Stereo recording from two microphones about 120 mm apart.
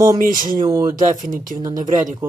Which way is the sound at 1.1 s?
90° right.